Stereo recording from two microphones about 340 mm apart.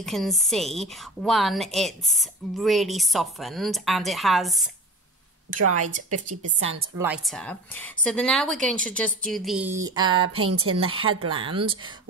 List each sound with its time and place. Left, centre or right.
0.0 s a woman's voice: centre
5.6 s a woman's voice: right
7.0 s a woman's voice: centre
9.8 s speech: centre
10.0 s speech: right
11.4 s speech: centre